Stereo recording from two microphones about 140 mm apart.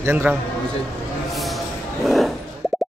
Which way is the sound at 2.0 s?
Centre (ahead or behind).